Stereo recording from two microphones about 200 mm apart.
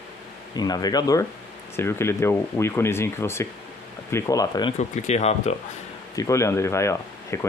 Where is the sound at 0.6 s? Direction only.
20° left (ahead or behind).